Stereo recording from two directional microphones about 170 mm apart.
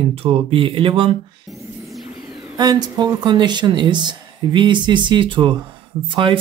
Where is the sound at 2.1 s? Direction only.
20° right (ahead or behind).